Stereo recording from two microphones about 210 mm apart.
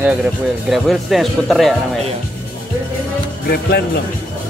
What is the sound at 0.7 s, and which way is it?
Speech, centre (ahead or behind).